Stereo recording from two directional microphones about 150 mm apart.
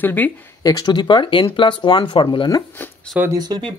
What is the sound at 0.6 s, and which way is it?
Speech, 25° left (ahead or behind).